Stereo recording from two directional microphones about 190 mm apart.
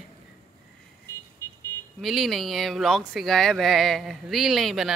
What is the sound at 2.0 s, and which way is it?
Speech, centre (ahead or behind).